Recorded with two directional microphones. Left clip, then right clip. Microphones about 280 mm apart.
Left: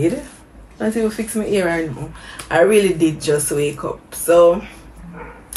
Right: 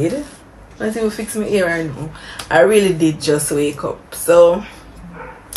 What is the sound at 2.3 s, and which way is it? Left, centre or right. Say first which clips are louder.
Speech: right 2 dB; centre.